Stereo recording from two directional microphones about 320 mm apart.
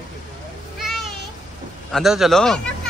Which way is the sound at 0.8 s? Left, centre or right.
Centre.